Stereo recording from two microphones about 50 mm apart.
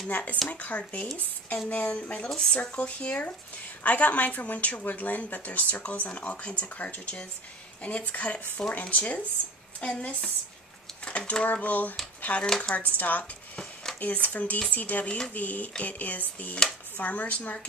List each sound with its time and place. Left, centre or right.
0.1 s a woman's voice: left
2.2 s a woman's voice: centre
11.4 s a woman's voice: left
12.4 s speech: centre
12.7 s a woman's voice: left
13.2 s a sound: centre
13.9 s a woman's voice: left